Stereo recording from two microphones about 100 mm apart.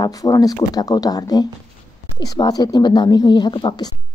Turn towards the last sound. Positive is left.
turn(degrees=50)  # may be behind; listen again after turning